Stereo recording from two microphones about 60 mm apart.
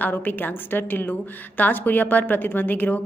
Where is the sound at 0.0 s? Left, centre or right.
Left.